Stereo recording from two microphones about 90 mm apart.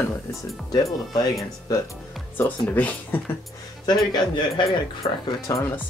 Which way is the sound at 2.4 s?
20° left (ahead or behind).